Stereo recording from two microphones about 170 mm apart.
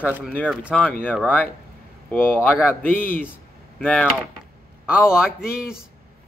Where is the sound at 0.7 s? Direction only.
5° left (ahead or behind).